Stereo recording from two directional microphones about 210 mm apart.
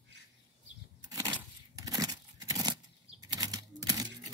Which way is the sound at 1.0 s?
15° right (ahead or behind).